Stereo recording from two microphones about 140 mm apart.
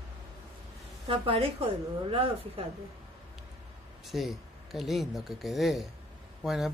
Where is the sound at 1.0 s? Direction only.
40° right (ahead or behind).